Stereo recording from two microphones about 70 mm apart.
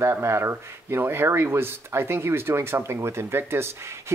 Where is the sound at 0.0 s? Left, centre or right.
Right.